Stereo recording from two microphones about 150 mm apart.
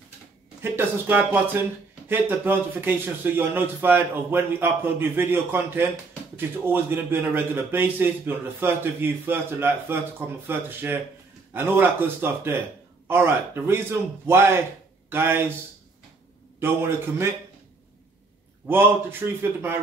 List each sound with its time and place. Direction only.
0.6 s a man's voice: 15° right (ahead or behind)
16.5 s a man's voice: 15° right (ahead or behind)
18.7 s a man's voice: 15° right (ahead or behind)